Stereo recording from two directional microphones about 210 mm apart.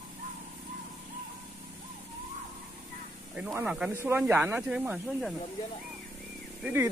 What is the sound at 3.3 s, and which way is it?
Speech, 10° right (ahead or behind).